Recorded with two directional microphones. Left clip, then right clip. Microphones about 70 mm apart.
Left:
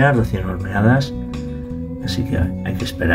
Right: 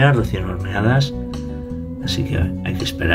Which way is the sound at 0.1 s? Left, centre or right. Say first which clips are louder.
Left 1 dB; centre.